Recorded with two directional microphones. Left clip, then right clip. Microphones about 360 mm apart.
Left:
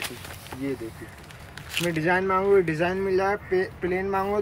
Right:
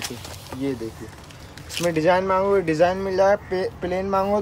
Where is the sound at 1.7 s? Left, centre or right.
Centre.